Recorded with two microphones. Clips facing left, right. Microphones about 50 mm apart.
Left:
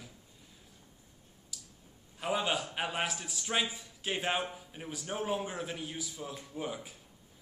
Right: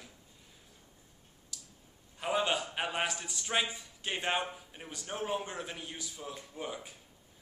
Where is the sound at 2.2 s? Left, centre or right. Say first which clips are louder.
Right 1 dB; centre.